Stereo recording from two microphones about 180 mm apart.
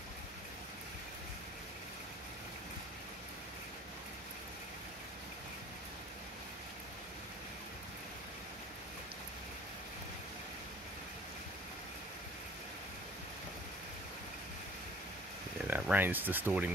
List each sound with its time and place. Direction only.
15.6 s speech: 10° right (ahead or behind)